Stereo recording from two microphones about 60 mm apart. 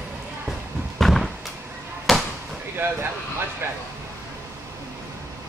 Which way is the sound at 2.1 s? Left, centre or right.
Centre.